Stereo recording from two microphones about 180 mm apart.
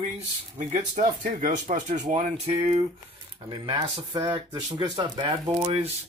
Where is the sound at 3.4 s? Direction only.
25° right (ahead or behind).